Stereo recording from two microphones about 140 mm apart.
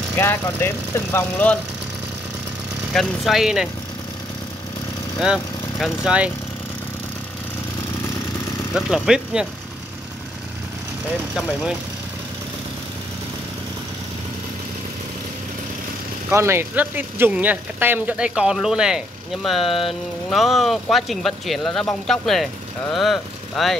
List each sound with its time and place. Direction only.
0.1 s speech: 15° left (ahead or behind)
2.9 s speech: centre (ahead or behind)
5.2 s speech: 5° right (ahead or behind)
8.7 s speech: 5° right (ahead or behind)
16.3 s speech: 20° right (ahead or behind); by 23.8 s centre (ahead or behind)